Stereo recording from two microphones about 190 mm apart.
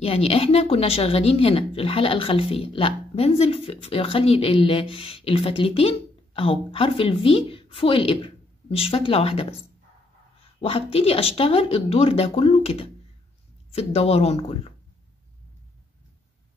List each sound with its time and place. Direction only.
0.0 s speech: 30° left (ahead or behind)
10.6 s speech: 30° left (ahead or behind)